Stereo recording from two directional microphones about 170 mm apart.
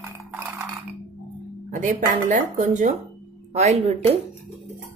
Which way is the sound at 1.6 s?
45° right (ahead or behind).